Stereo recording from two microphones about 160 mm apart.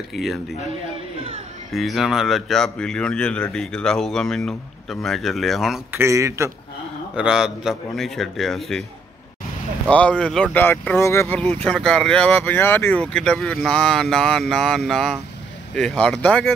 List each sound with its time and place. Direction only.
0.1 s speech: centre (ahead or behind)
1.7 s speech: centre (ahead or behind)
5.9 s a man's voice: 20° right (ahead or behind)
7.2 s speech: 5° right (ahead or behind)
9.8 s speech: 5° left (ahead or behind)